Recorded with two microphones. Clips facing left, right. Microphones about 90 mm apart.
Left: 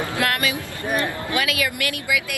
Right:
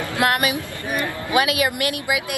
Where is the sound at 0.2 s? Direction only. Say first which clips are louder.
Right 5 dB; 20° right (ahead or behind).